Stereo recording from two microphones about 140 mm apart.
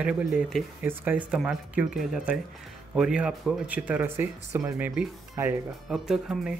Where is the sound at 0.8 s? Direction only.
10° right (ahead or behind).